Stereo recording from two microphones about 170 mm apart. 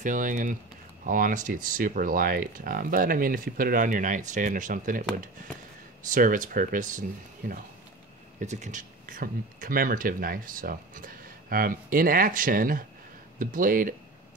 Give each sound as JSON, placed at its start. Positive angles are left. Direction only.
{"t": 0.0, "sound": "speech", "side_deg": -50}